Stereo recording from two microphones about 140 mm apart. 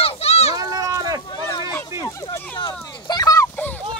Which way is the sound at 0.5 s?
25° right (ahead or behind).